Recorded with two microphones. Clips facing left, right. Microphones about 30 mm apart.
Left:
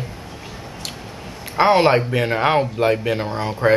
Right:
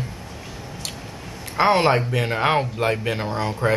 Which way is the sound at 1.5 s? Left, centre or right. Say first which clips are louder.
Left 3 dB; centre.